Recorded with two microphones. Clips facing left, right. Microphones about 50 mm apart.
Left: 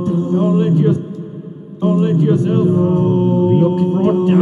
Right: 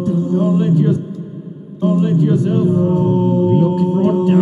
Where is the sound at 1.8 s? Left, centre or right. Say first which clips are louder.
Even; left.